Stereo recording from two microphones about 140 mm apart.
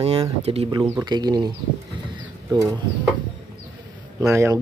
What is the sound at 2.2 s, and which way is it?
Pigeon, 25° right (ahead or behind).